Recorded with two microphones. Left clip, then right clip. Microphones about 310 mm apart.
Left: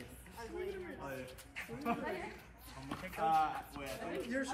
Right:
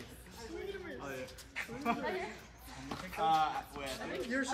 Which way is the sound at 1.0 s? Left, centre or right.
Right.